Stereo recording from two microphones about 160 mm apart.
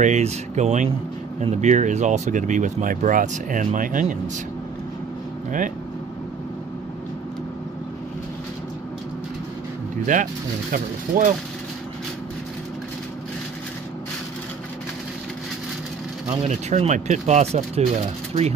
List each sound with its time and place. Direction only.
0.0 s speech: 45° right (ahead or behind)
10.1 s speech: 50° right (ahead or behind)
16.3 s speech: 45° right (ahead or behind)